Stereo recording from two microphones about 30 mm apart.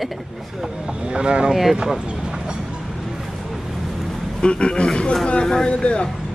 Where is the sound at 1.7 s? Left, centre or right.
Right.